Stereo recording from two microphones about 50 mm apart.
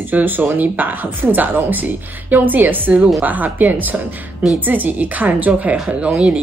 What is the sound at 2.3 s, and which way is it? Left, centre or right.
Speech, right.